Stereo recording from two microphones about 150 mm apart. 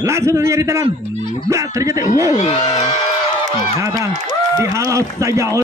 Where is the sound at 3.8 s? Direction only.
20° right (ahead or behind).